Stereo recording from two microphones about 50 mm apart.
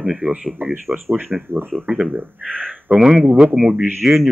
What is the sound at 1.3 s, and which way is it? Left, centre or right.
Speech, centre.